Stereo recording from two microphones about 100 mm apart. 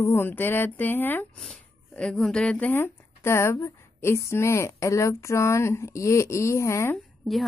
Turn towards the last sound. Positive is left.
turn(degrees=0)  # may be behind; listen again after turning